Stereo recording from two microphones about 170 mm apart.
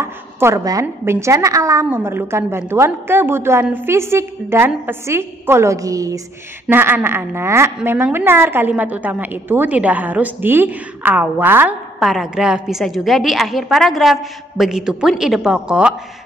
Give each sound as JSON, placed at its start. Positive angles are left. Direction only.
{"t": 0.0, "sound": "a woman's voice", "side_deg": -15}
{"t": 12.0, "sound": "a woman's voice", "side_deg": 0}